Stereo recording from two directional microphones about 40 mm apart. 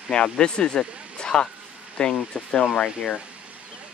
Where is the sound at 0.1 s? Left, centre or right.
Left.